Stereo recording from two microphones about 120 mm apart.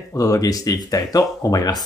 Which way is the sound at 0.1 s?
30° left (ahead or behind).